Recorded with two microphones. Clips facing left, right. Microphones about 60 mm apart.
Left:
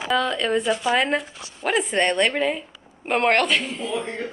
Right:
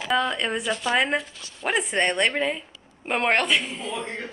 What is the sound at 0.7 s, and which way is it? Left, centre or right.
Speech, centre.